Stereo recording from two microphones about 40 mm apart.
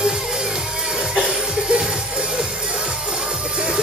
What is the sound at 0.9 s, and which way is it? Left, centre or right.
Music, centre.